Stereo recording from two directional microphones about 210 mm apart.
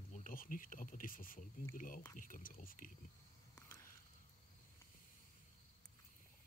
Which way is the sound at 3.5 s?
10° left (ahead or behind).